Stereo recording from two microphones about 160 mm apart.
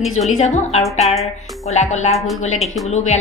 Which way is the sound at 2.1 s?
Centre (ahead or behind).